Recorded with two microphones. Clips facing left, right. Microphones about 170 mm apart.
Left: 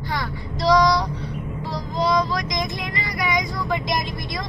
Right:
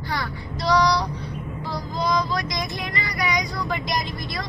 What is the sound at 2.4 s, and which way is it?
Vehicle, 20° left (ahead or behind).